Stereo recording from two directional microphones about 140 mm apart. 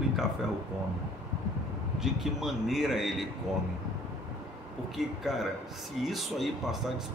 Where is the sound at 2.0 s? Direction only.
Centre (ahead or behind).